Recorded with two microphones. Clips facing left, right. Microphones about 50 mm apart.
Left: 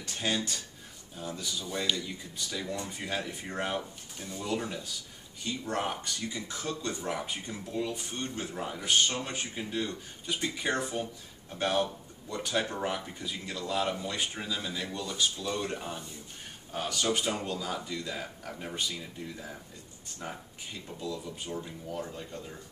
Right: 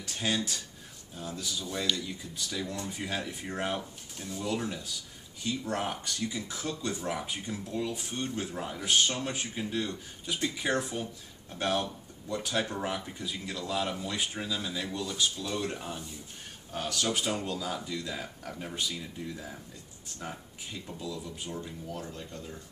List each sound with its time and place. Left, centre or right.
0.0 s speech: centre